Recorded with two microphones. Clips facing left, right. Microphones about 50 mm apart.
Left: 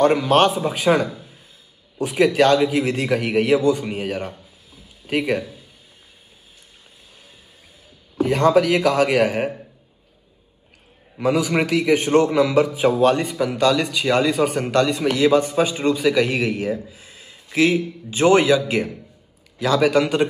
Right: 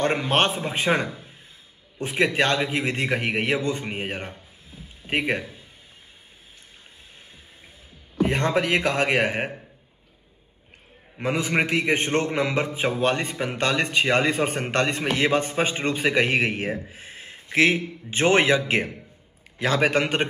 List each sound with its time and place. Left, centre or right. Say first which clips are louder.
0.0 s a man's voice: left 6 dB; right
8.2 s a man's voice: left 6 dB; right
11.1 s a man's voice: left 4 dB; right